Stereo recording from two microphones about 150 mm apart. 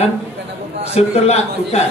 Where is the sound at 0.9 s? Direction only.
45° left (ahead or behind).